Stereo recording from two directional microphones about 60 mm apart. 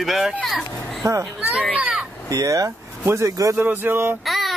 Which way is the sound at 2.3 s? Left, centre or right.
Right.